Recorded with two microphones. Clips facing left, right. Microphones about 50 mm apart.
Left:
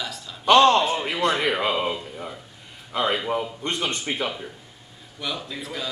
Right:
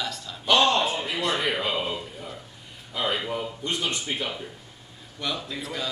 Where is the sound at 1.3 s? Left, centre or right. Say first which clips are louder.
Left 3 dB; left.